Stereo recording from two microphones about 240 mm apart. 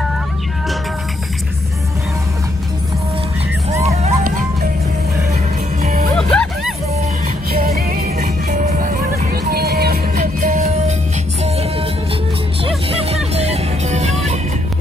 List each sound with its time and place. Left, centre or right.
3.8 s music: right
5.8 s music: right
6.1 s music: centre
7.7 s music: right
10.1 s music: right
12.6 s music: right